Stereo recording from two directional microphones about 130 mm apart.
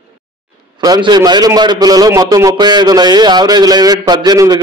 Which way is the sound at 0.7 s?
30° right (ahead or behind).